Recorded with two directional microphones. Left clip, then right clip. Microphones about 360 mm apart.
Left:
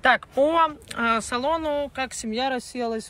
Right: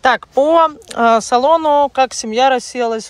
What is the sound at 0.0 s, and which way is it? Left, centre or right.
Speech, centre.